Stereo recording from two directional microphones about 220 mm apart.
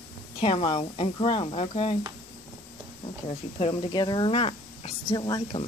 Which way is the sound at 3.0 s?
25° left (ahead or behind).